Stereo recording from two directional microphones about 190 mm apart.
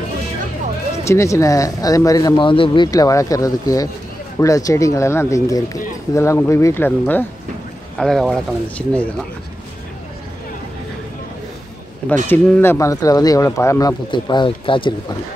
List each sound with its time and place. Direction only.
1.0 s speech: 15° left (ahead or behind)
12.3 s speech: 10° left (ahead or behind); by 15.1 s 25° left (ahead or behind)